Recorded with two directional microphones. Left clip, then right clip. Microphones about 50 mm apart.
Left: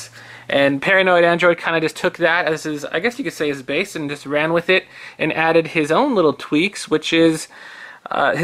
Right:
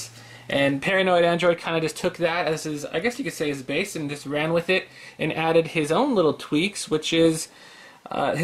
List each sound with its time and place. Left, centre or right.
0.5 s speech: left